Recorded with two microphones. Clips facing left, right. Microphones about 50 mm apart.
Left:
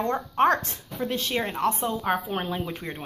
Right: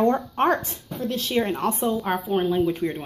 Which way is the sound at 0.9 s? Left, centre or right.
Centre.